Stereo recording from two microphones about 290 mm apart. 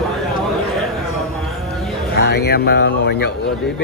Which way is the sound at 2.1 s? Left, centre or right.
Left.